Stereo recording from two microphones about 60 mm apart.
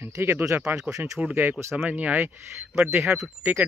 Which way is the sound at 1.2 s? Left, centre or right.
Centre.